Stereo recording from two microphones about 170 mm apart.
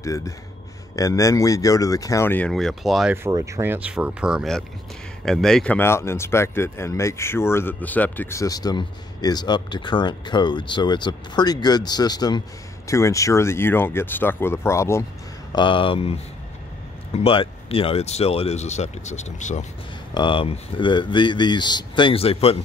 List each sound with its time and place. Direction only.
0.0 s speech: 20° left (ahead or behind)
2.5 s speech: centre (ahead or behind)
3.3 s speech: 20° right (ahead or behind); by 15.0 s 15° left (ahead or behind)
15.5 s speech: 30° left (ahead or behind)
20.2 s speech: 30° left (ahead or behind)